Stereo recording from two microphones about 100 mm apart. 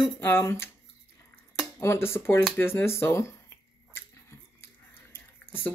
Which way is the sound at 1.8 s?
25° left (ahead or behind).